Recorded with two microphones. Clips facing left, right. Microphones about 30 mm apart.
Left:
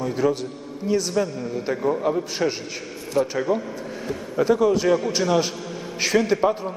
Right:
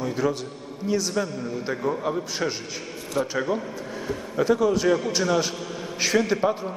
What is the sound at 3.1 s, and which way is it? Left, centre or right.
Speech, centre.